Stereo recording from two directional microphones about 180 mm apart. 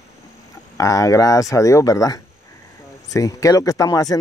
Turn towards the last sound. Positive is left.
turn(degrees=20)  # may be behind; listen again after turning